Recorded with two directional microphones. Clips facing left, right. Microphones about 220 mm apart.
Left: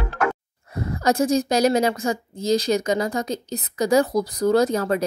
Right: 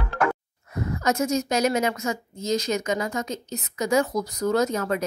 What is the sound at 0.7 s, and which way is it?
A woman's voice, 35° left (ahead or behind).